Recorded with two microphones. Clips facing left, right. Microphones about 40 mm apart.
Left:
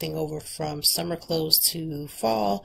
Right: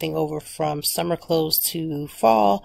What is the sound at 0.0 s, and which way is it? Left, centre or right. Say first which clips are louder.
Speech: right 5 dB; right.